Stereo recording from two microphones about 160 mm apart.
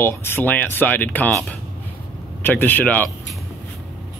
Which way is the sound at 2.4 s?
10° left (ahead or behind).